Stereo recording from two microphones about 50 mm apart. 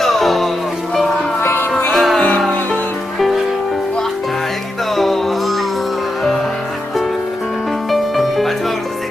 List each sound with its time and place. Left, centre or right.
0.0 s music: centre
1.4 s music: left
1.9 s music: centre
3.2 s music: centre
4.9 s music: centre
7.9 s music: centre